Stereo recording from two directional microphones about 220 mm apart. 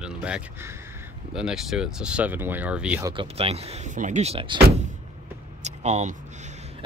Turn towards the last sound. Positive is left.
turn(degrees=-30)  # may be behind; listen again after turning